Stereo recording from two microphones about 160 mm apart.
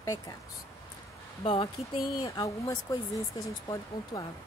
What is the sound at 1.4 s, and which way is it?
Speech, 35° left (ahead or behind).